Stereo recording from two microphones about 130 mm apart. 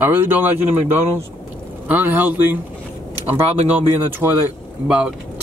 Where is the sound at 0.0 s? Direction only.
15° right (ahead or behind).